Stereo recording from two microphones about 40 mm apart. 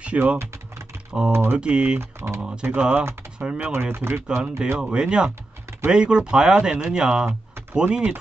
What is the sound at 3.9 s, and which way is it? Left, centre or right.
Speech, right.